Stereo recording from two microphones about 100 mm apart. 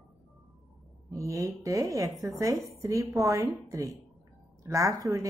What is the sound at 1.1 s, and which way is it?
A woman's voice, 35° right (ahead or behind).